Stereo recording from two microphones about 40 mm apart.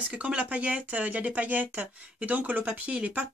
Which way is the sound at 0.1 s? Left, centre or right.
Right.